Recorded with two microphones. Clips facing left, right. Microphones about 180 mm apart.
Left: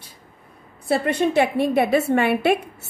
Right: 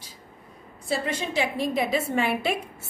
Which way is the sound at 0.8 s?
60° left (ahead or behind).